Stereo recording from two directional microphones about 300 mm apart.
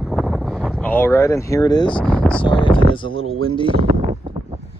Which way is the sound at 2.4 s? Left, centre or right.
Centre.